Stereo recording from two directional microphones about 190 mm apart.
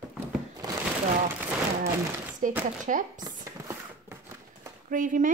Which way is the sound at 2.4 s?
40° right (ahead or behind).